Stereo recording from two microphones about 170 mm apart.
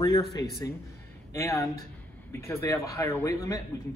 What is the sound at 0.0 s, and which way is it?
Speech, 20° left (ahead or behind).